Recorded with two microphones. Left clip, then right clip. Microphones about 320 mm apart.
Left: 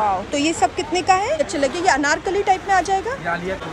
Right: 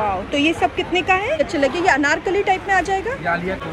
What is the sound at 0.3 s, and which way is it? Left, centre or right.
Speech, left.